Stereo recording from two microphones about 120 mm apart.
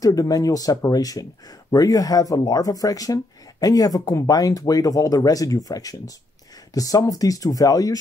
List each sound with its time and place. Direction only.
0.0 s speech: 30° left (ahead or behind)